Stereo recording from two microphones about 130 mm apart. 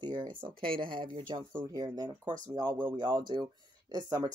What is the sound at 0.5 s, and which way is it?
Speech, 90° right.